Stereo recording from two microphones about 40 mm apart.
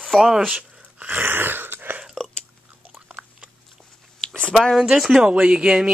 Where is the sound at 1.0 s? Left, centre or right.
Right.